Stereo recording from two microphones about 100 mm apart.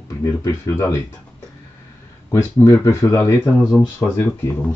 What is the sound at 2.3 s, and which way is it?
Speech, 30° left (ahead or behind).